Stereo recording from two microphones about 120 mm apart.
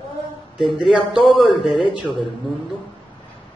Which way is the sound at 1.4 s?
45° left (ahead or behind).